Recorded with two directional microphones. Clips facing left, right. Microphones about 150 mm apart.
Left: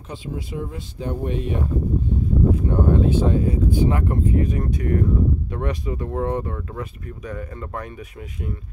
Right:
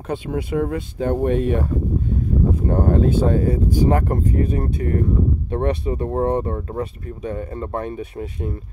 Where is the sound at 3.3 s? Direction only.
45° right (ahead or behind).